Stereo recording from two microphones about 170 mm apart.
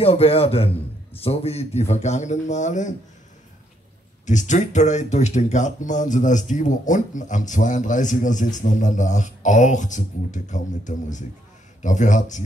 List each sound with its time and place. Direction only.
0.0 s a man's voice: 35° left (ahead or behind)
4.3 s speech: 45° left (ahead or behind)